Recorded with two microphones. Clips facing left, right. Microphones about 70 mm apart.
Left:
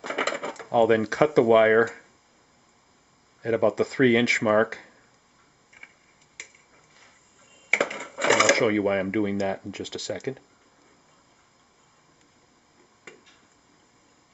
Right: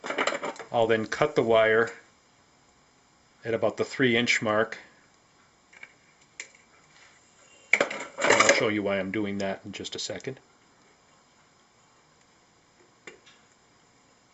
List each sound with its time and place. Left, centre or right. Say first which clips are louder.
0.0 s bird: even; centre
0.7 s speech: left 4 dB; centre
3.4 s speech: left 4 dB; left
6.4 s a sound: even; centre
7.7 s coin: even; centre
8.6 s speech: left 4 dB; centre